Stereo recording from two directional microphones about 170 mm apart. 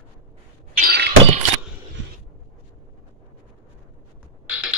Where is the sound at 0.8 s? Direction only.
70° right (ahead or behind).